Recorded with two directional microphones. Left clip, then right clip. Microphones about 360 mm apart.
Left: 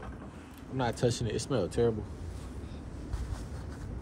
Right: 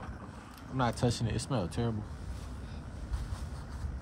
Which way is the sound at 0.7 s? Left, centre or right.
Centre.